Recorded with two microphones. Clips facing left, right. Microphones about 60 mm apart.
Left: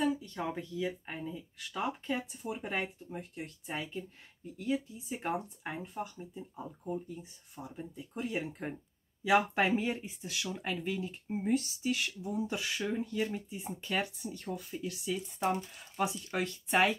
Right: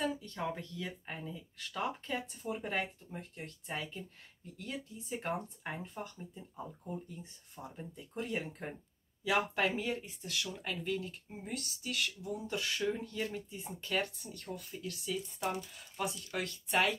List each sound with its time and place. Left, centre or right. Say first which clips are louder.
0.0 s speech: left 4 dB; centre
9.2 s speech: left 4 dB; centre